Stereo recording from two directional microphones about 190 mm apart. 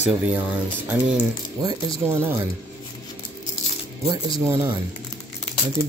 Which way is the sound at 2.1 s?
10° right (ahead or behind).